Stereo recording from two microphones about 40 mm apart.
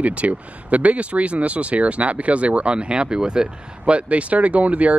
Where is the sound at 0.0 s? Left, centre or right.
Right.